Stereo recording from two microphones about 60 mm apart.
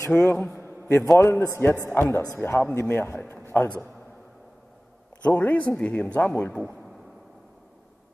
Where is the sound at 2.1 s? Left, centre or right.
Left.